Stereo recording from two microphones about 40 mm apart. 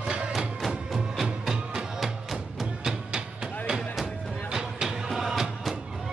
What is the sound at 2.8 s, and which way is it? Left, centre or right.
Music, centre.